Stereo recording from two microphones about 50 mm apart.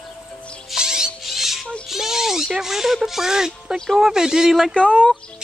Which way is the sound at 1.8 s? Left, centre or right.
Centre.